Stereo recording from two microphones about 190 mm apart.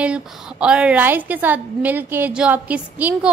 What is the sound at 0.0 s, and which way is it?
A woman's voice, 5° right (ahead or behind).